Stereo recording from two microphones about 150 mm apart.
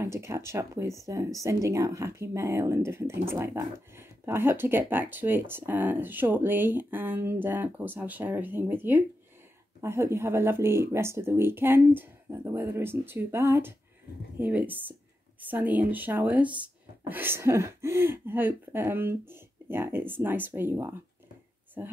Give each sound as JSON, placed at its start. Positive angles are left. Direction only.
{"t": 0.0, "sound": "speech", "side_deg": -20}